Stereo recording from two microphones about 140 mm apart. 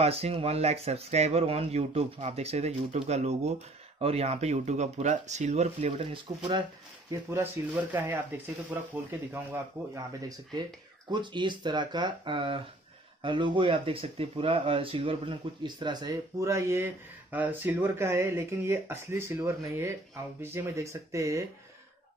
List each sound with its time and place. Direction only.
0.0 s speech: 45° right (ahead or behind)
6.1 s speech: 35° right (ahead or behind)
7.1 s speech: 20° right (ahead or behind)